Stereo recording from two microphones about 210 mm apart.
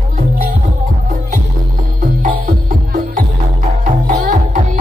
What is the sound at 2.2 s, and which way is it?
Music, 40° right (ahead or behind).